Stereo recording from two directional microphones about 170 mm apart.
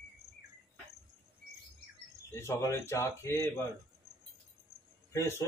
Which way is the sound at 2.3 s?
15° left (ahead or behind).